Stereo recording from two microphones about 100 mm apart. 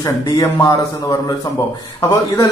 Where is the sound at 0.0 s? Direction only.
35° left (ahead or behind).